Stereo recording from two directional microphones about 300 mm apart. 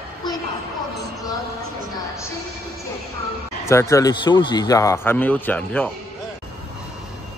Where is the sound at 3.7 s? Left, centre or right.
Centre.